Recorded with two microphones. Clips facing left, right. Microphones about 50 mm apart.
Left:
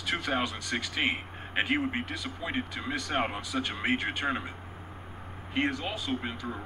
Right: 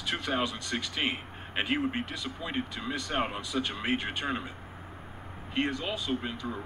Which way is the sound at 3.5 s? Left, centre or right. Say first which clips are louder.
Right 1 dB; centre.